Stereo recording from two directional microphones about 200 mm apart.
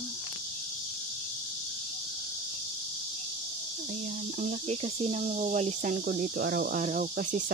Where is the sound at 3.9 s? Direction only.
45° right (ahead or behind).